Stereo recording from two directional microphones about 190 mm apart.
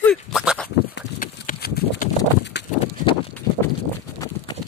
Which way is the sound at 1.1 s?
50° left (ahead or behind).